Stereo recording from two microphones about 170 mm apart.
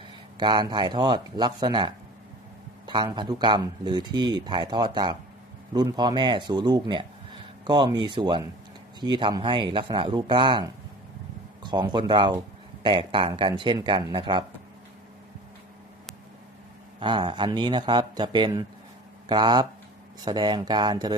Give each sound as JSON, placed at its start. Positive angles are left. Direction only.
{"t": 0.4, "sound": "speech", "side_deg": -25}
{"t": 2.9, "sound": "speech", "side_deg": -25}
{"t": 17.0, "sound": "speech", "side_deg": -25}